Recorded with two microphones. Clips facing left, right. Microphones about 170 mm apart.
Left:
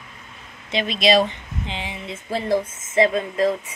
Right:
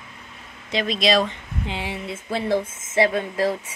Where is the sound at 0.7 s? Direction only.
Centre (ahead or behind).